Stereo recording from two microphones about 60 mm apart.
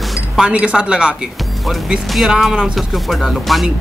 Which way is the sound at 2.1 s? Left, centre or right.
Centre.